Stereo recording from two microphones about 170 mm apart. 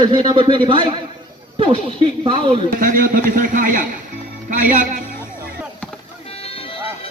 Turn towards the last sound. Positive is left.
turn(degrees=35)  # may be behind; listen again after turning